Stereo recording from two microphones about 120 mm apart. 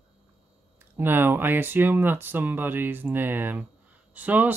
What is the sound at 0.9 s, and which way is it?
Speech, 15° right (ahead or behind).